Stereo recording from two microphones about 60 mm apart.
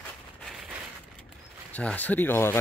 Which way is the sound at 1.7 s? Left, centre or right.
Left.